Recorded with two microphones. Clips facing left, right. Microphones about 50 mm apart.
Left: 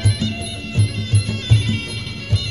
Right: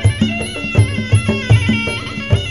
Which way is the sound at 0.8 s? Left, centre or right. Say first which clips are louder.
Right 4 dB; right.